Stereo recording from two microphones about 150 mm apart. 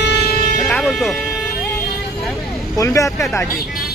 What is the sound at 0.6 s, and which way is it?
Music, centre (ahead or behind).